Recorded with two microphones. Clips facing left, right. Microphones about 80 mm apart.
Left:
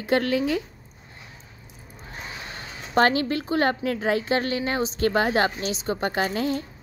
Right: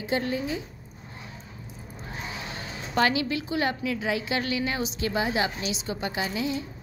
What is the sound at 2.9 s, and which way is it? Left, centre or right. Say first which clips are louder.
A woman's voice: left 4 dB; left.